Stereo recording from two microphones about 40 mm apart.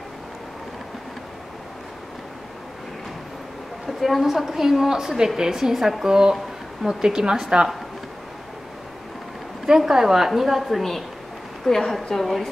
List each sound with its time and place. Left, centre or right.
4.0 s a woman's voice: centre
9.7 s a woman's voice: centre